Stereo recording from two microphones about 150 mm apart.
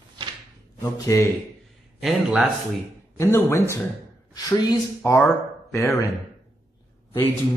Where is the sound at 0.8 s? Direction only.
20° left (ahead or behind).